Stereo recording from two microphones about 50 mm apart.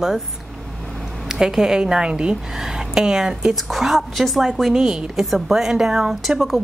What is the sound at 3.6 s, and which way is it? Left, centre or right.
A woman's voice, centre.